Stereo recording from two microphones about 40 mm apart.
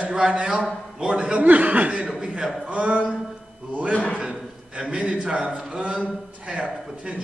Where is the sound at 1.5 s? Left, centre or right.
Right.